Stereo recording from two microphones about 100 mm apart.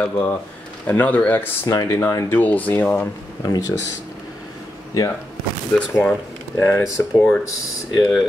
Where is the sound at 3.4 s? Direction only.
40° left (ahead or behind).